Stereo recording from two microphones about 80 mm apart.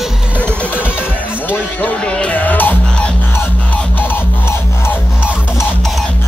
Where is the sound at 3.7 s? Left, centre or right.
Left.